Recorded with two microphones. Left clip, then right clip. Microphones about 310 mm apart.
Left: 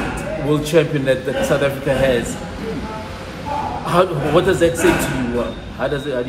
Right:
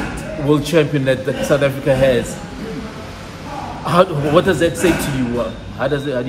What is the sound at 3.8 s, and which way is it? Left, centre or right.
A man's voice, right.